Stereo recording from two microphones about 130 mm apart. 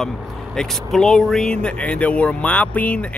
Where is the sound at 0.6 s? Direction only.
5° left (ahead or behind).